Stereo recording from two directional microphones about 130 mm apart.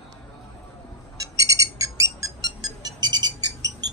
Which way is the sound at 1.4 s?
25° right (ahead or behind).